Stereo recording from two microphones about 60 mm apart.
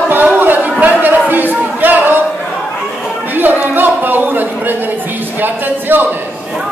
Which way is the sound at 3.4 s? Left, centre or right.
Right.